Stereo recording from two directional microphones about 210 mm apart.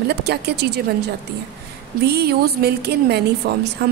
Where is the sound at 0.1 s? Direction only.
50° right (ahead or behind).